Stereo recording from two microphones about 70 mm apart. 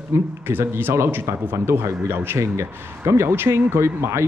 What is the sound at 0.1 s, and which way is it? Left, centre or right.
Speech, right.